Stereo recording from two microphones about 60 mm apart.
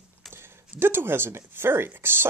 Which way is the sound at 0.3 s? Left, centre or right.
Right.